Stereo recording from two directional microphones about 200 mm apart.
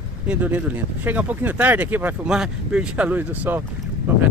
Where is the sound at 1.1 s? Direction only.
10° right (ahead or behind).